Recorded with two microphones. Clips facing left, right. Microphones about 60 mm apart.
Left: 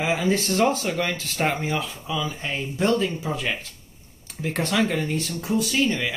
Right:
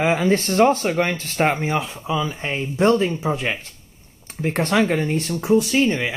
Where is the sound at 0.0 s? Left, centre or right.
Right.